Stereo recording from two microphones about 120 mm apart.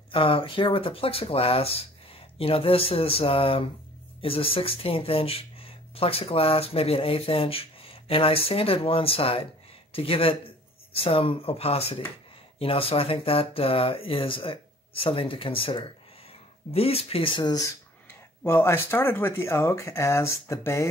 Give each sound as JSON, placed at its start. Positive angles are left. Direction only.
{"t": 0.1, "sound": "speech", "side_deg": 50}
{"t": 17.6, "sound": "speech", "side_deg": 20}